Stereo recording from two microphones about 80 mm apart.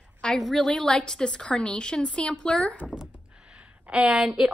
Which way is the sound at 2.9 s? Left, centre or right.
Centre.